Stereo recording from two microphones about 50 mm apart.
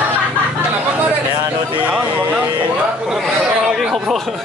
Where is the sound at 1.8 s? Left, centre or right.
Right.